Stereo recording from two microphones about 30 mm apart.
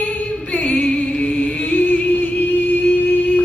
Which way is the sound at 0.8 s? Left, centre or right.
Left.